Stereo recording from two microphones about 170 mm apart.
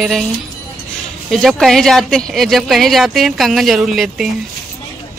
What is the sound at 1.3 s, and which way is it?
Speech, centre (ahead or behind).